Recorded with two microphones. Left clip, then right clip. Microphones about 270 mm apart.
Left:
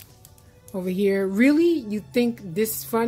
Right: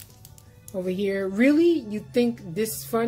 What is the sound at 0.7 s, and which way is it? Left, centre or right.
A woman's voice, left.